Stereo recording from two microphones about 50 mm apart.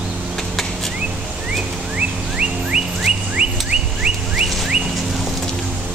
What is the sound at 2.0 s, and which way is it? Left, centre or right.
Bird, centre.